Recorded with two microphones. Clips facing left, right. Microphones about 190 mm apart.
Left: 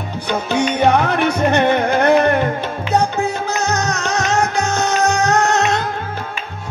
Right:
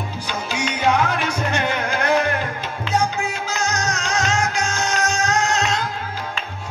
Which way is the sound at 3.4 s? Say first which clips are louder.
Left 5 dB; 60° left (ahead or behind).